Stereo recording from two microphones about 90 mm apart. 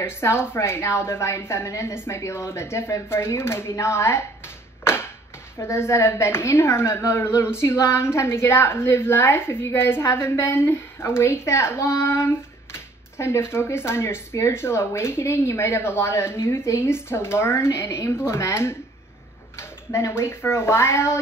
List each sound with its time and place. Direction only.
0.0 s a woman's voice: 30° left (ahead or behind)
5.6 s a woman's voice: 30° left (ahead or behind)